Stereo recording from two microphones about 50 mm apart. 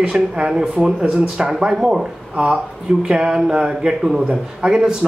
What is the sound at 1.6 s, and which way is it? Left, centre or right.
Speech, centre.